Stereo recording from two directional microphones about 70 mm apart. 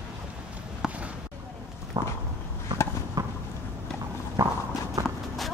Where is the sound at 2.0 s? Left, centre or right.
Right.